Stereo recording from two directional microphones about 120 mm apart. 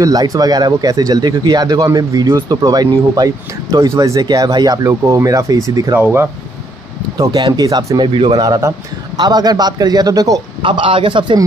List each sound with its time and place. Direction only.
0.0 s speech: 30° right (ahead or behind)
7.2 s speech: 35° right (ahead or behind)
8.4 s speech: 30° right (ahead or behind)
10.6 s speech: 45° right (ahead or behind)